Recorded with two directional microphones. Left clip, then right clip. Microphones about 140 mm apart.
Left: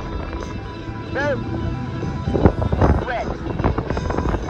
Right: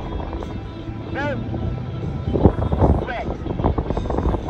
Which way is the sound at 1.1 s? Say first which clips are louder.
Left 4 dB; 10° left (ahead or behind).